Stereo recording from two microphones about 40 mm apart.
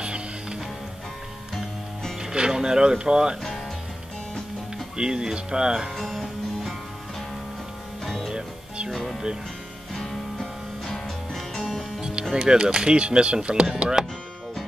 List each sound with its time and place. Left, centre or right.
0.0 s music: right
1.5 s music: centre
2.2 s speech: centre
4.9 s speech: centre
5.8 s speech: centre
8.0 s music: centre
8.3 s music: centre
8.9 s music: centre
12.0 s music: right
12.3 s speech: centre